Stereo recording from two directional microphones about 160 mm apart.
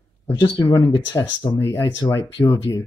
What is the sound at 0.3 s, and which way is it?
Speech, 25° left (ahead or behind).